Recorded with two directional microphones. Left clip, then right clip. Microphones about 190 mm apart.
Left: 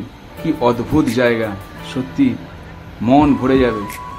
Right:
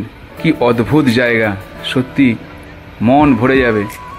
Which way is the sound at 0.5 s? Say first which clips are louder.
Right 4 dB; 20° right (ahead or behind).